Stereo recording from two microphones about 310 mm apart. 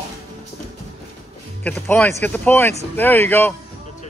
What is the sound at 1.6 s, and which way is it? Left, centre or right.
Speech, centre.